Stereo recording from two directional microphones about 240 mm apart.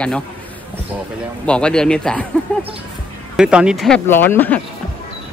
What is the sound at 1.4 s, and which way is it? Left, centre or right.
Speech, centre.